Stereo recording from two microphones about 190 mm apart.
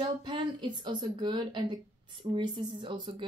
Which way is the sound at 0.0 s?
25° right (ahead or behind).